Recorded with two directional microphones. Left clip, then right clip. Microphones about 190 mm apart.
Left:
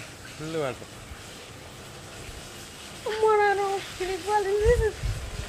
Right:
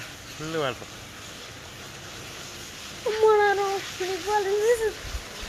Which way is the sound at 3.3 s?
50° right (ahead or behind).